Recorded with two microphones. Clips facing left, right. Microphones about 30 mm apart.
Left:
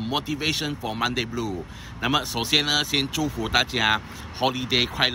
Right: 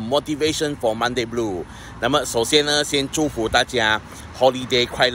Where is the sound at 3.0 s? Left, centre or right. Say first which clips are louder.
Right 5 dB; left.